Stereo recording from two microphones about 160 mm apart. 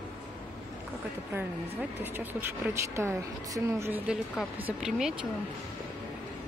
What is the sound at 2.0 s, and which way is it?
A woman's voice, 10° right (ahead or behind).